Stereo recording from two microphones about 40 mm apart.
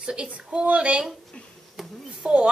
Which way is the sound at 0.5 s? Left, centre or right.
Right.